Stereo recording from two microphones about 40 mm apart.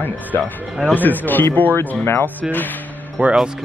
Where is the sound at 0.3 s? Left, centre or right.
Left.